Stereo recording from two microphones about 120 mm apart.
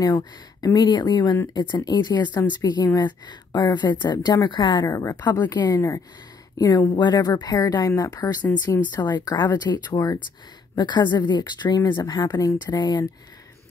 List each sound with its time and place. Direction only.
0.0 s speech: 30° left (ahead or behind)
4.8 s speech: 25° left (ahead or behind)